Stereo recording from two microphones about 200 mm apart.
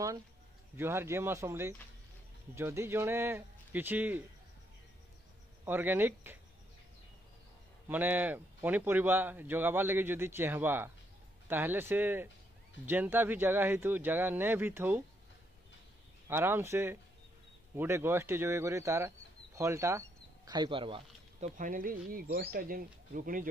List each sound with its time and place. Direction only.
0.7 s speech: 10° right (ahead or behind)
5.7 s speech: 10° right (ahead or behind)
7.9 s speech: 10° right (ahead or behind)
16.3 s speech: 10° right (ahead or behind)
21.5 s speech: 40° right (ahead or behind)